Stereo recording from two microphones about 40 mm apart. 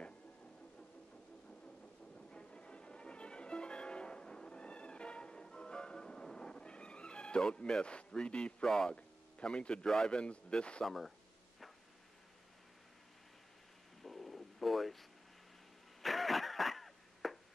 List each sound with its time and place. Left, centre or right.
2.1 s music: left
8.2 s a man's voice: left
8.6 s speech: centre
8.9 s a man's voice: left
10.9 s speech: centre
14.0 s a sound: centre